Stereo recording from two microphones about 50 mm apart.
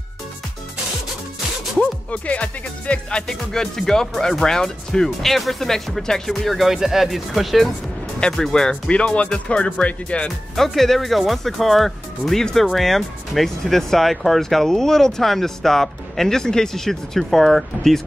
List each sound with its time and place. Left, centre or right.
1.8 s speech: left; by 7.7 s centre
8.2 s speech: centre
10.5 s speech: centre